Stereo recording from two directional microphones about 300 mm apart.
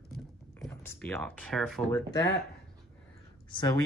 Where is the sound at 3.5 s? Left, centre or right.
Centre.